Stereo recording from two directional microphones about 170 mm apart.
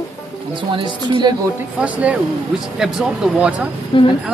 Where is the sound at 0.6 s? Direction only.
30° right (ahead or behind).